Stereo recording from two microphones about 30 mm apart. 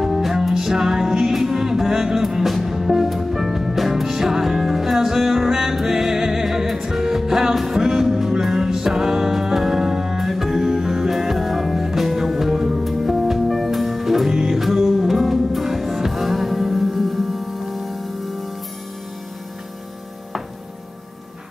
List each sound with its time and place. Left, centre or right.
0.0 s music: centre
3.9 s music: centre
10.2 s music: centre
12.8 s music: centre